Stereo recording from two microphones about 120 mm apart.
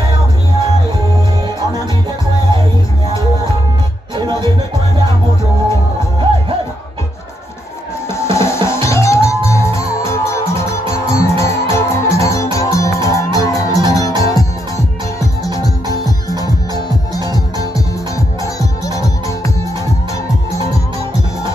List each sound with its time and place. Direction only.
8.1 s music: 25° left (ahead or behind)